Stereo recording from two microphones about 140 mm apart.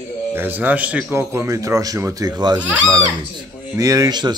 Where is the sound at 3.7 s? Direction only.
25° right (ahead or behind).